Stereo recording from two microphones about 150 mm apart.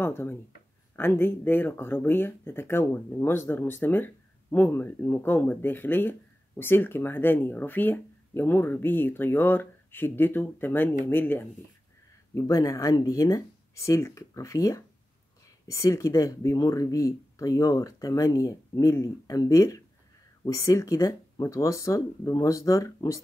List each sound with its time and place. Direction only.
0.0 s speech: 15° left (ahead or behind)